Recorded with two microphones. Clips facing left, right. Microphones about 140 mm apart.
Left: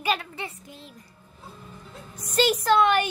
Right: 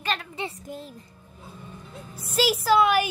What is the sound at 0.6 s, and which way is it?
Speech, 45° right (ahead or behind).